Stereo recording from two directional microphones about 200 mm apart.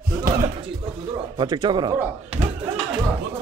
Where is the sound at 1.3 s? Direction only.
20° right (ahead or behind).